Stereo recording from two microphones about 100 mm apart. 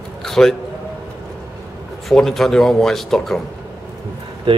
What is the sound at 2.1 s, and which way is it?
Speech, 5° left (ahead or behind).